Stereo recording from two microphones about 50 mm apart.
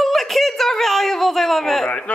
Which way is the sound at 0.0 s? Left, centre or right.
Centre.